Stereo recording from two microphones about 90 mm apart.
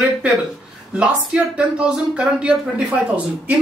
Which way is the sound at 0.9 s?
15° right (ahead or behind).